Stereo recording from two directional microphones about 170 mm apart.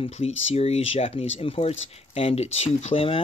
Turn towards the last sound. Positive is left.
turn(degrees=35)  # may be behind; listen again after turning